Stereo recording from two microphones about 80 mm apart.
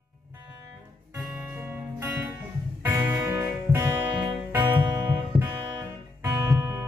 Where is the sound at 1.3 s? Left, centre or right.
Right.